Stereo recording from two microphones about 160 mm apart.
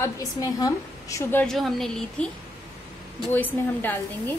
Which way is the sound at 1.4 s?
Centre (ahead or behind).